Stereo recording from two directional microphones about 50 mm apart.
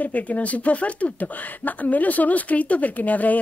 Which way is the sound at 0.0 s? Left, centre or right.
Left.